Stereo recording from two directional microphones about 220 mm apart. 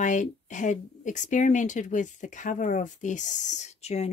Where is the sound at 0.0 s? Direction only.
35° left (ahead or behind).